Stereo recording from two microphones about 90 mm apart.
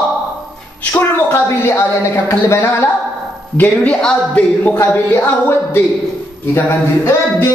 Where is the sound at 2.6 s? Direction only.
25° left (ahead or behind).